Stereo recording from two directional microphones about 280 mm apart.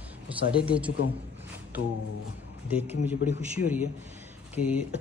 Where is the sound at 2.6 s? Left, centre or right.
Centre.